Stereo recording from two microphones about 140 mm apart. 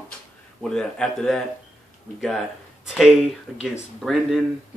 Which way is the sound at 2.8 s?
5° right (ahead or behind).